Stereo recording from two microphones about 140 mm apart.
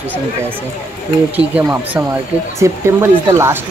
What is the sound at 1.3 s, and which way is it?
Speech, 10° right (ahead or behind).